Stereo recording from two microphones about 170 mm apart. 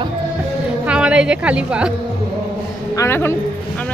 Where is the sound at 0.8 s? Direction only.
5° right (ahead or behind).